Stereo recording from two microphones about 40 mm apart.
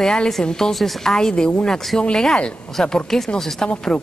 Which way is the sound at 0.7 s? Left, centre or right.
Centre.